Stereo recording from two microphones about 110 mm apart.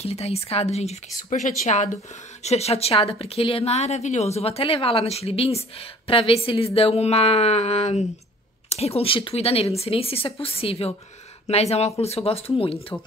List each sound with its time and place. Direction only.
0.0 s speech: 70° left (ahead or behind); by 1.9 s 90° left
2.4 s speech: 75° left (ahead or behind)
11.4 s speech: 75° left (ahead or behind)